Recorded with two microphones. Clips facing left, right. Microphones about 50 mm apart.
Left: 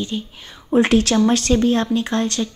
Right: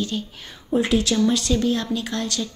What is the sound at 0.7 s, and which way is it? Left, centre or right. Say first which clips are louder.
Speech: left 5 dB; left.